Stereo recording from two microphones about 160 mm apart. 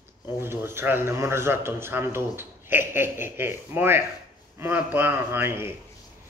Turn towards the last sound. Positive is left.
turn(degrees=-15)  # may be behind; listen again after turning